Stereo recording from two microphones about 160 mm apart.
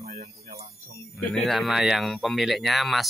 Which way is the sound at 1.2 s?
5° left (ahead or behind).